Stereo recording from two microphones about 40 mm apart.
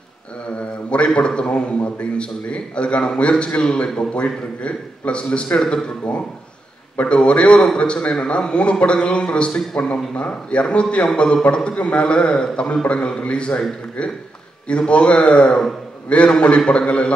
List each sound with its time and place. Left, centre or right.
0.6 s a man's voice: left
7.0 s a man's voice: left